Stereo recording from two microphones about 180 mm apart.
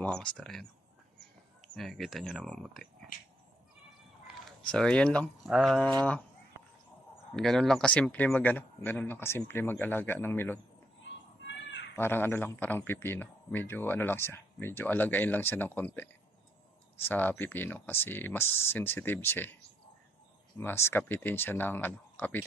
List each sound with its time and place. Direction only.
0.0 s speech: 5° left (ahead or behind)
1.8 s speech: centre (ahead or behind)
4.6 s speech: 5° left (ahead or behind)
7.3 s a man's voice: 5° left (ahead or behind)
11.1 s a sound: 90° left
11.9 s a man's voice: 10° left (ahead or behind)
17.1 s a man's voice: 10° left (ahead or behind)
20.5 s a man's voice: 15° left (ahead or behind)